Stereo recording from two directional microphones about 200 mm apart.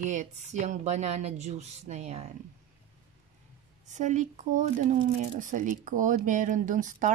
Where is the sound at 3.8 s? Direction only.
35° right (ahead or behind).